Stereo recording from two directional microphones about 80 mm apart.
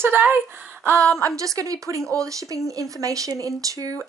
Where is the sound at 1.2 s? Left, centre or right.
Right.